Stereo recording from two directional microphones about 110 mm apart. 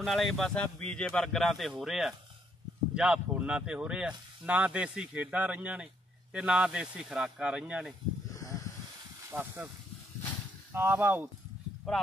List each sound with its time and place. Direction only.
0.0 s speech: centre (ahead or behind)
8.3 s snake: 30° left (ahead or behind)
9.3 s speech: 15° right (ahead or behind)
10.7 s speech: 20° right (ahead or behind)
11.8 s speech: centre (ahead or behind)